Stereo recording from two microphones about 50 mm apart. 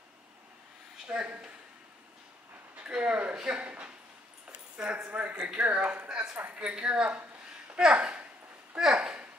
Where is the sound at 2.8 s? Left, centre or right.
Right.